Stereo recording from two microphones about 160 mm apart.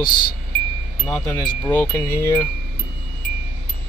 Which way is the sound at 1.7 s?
10° left (ahead or behind).